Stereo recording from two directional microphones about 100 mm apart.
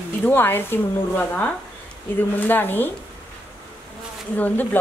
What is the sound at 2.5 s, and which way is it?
Speech, 20° left (ahead or behind).